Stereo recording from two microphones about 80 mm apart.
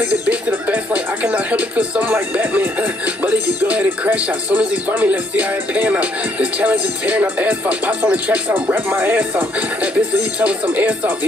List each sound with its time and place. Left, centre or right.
0.3 s speech: centre
10.4 s speech: centre